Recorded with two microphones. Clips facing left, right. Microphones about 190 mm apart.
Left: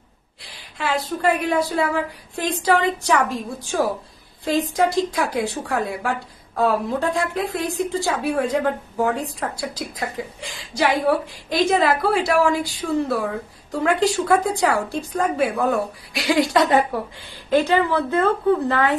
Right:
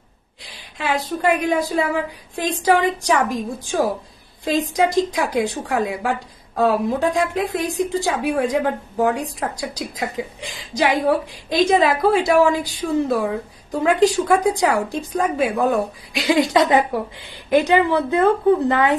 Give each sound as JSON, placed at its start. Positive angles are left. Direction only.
{"t": 0.4, "sound": "a woman's voice", "side_deg": -20}